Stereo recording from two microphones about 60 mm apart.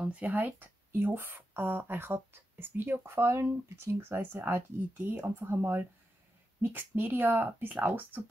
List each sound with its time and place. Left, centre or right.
0.0 s speech: right